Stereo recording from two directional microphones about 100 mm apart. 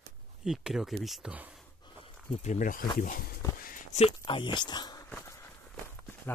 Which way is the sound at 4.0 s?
70° left (ahead or behind).